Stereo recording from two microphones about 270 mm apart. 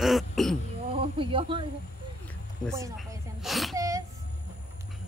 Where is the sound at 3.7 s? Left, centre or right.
Centre.